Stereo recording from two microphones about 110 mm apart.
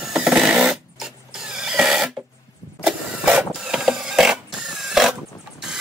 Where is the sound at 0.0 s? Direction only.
5° right (ahead or behind).